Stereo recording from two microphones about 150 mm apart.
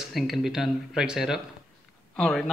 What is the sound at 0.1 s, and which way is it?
Speech, 5° right (ahead or behind).